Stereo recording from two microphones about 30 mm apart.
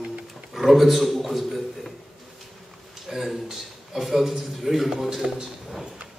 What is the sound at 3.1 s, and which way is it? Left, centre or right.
A man's voice, centre.